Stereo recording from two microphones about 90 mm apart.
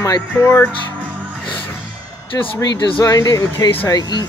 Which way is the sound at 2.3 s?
40° left (ahead or behind).